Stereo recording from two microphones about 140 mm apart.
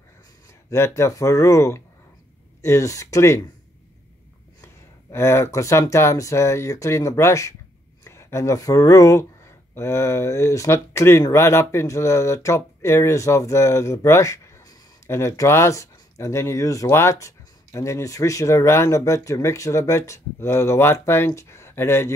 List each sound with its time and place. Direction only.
0.7 s speech: 20° left (ahead or behind)
5.1 s speech: 20° left (ahead or behind)